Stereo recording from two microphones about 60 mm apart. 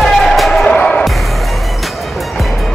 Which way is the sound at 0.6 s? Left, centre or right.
Centre.